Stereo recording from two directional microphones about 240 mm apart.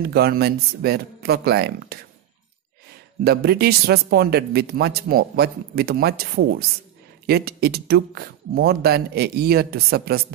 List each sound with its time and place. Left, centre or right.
0.0 s speech: right
3.3 s speech: right